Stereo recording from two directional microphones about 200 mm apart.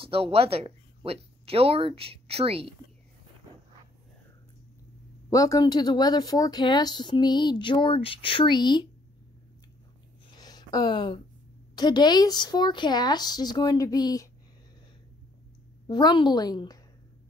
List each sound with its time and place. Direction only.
0.0 s speech: 25° right (ahead or behind)
5.3 s speech: 15° left (ahead or behind)
10.3 s a sound: 20° left (ahead or behind)
11.7 s speech: 20° left (ahead or behind)
15.9 s speech: 20° left (ahead or behind)